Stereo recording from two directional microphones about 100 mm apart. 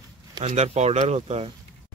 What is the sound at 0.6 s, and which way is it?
Speech, 90° right.